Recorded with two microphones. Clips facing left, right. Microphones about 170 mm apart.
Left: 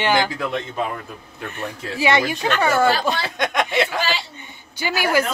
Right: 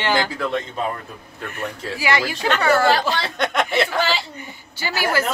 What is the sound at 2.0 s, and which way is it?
Speech, 20° left (ahead or behind).